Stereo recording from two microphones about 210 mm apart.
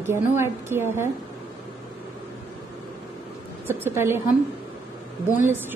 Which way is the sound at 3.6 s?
10° right (ahead or behind).